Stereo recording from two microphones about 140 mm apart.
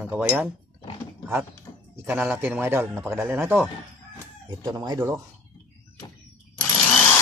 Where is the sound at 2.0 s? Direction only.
15° right (ahead or behind).